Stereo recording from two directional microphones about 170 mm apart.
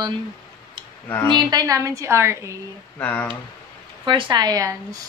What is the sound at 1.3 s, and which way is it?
A woman's voice, 20° right (ahead or behind).